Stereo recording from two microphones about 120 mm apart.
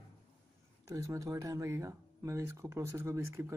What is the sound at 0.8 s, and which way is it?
Speech, 25° right (ahead or behind).